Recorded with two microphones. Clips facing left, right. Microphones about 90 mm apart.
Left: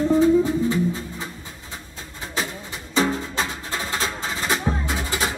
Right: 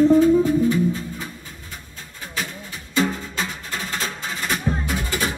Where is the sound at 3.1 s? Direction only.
20° left (ahead or behind).